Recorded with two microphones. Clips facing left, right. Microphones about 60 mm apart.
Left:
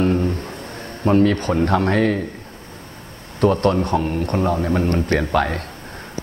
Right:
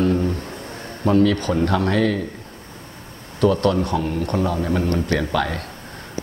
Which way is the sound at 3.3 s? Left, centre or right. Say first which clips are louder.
Left 1 dB; left.